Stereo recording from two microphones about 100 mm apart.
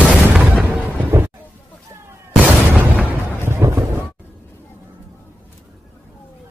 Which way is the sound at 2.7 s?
15° right (ahead or behind).